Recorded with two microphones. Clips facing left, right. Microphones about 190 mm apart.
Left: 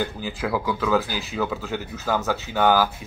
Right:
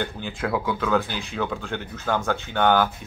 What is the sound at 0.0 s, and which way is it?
Speech, centre (ahead or behind).